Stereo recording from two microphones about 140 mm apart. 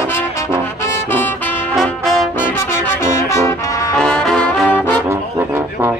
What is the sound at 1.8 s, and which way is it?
Brass instrument, centre (ahead or behind).